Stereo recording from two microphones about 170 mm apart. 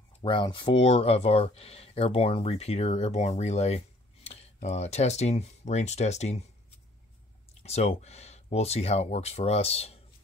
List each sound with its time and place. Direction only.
0.2 s speech: 30° left (ahead or behind)
7.6 s speech: 40° left (ahead or behind)